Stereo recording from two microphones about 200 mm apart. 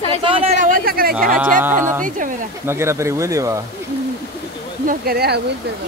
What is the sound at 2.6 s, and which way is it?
Speech, 10° right (ahead or behind).